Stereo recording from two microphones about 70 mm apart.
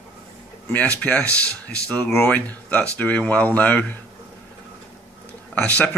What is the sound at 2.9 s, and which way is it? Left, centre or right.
A man's voice, left.